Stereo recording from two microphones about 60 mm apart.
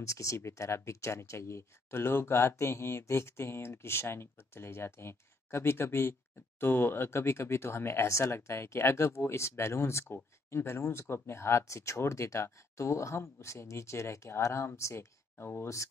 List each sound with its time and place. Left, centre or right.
0.0 s speech: left